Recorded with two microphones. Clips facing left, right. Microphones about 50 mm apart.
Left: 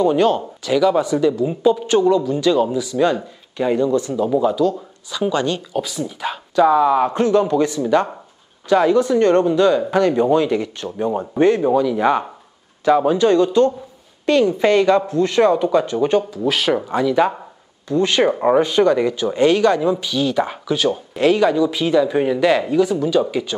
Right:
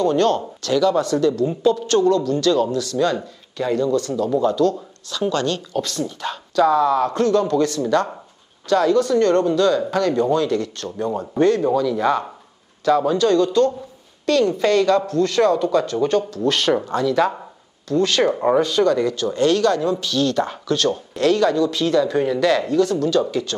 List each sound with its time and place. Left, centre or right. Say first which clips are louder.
0.0 s a man's voice: left 2 dB; centre